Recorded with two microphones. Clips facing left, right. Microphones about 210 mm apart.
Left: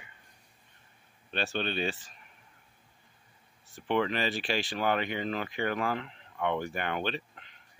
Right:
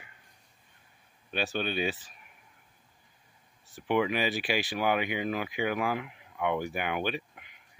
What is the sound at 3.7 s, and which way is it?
Speech, 10° right (ahead or behind).